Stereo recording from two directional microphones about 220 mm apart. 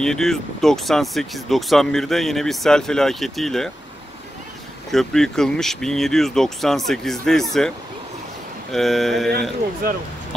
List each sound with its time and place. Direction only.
0.0 s speech: centre (ahead or behind)
4.9 s speech: centre (ahead or behind)
8.7 s speech: centre (ahead or behind)
9.8 s speech: 40° right (ahead or behind)